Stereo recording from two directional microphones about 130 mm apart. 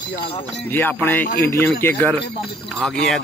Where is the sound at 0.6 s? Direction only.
15° left (ahead or behind).